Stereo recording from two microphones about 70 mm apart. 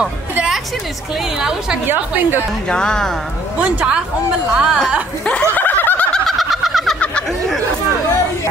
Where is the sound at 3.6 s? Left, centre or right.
Centre.